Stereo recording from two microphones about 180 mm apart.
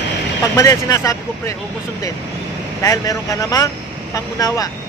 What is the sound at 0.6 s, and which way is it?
Speech, 20° left (ahead or behind).